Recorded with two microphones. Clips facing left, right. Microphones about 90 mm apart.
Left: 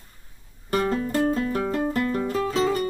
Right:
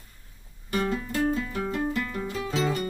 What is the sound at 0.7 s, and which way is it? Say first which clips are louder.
Music: left 4 dB; 45° left (ahead or behind).